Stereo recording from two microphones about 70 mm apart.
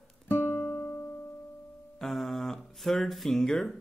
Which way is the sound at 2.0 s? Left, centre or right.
Centre.